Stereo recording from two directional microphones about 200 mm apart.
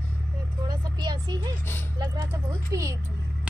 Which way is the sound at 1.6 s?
10° left (ahead or behind).